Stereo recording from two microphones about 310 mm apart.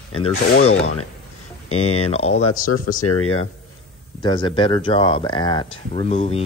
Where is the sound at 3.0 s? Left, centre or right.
Left.